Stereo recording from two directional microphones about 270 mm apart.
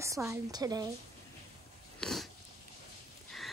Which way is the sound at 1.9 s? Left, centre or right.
Centre.